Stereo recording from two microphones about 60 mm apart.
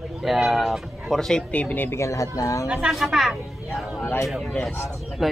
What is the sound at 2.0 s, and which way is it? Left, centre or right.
Speech, left.